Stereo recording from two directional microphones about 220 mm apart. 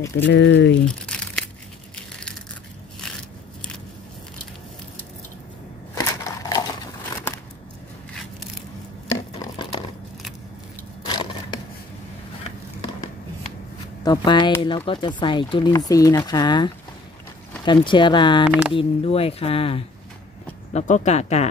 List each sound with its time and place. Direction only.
0.1 s speech: 50° left (ahead or behind)
0.8 s crumpling: 5° left (ahead or behind)
5.9 s crushing: 15° left (ahead or behind)
9.4 s a sound: 20° left (ahead or behind)
11.1 s a sound: 20° left (ahead or behind)
14.0 s speech: 20° left (ahead or behind)